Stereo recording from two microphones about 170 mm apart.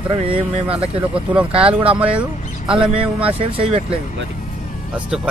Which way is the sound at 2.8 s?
30° right (ahead or behind).